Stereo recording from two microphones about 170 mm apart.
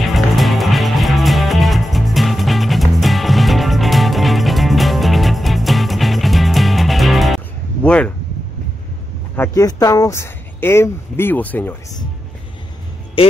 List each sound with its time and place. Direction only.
0.0 s music: centre (ahead or behind)
9.4 s speech: 20° left (ahead or behind)
13.2 s speech: 30° left (ahead or behind)